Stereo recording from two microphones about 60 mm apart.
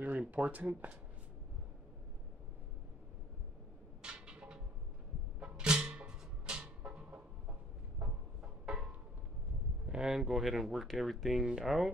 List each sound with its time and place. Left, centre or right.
0.0 s speech: right
4.0 s music: centre
8.4 s music: centre
9.8 s speech: centre